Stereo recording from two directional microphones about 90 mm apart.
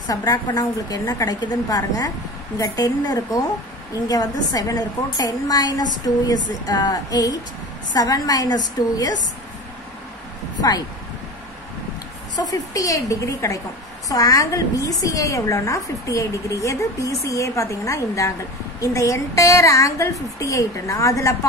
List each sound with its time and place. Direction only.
0.1 s a woman's voice: 45° left (ahead or behind)
12.4 s a woman's voice: 40° left (ahead or behind)